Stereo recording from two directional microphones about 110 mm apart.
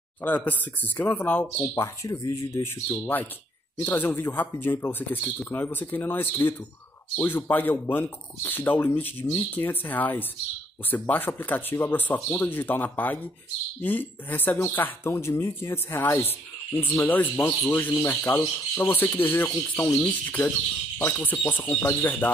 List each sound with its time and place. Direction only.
0.2 s speech: 15° left (ahead or behind)
1.6 s speech: 30° left (ahead or behind)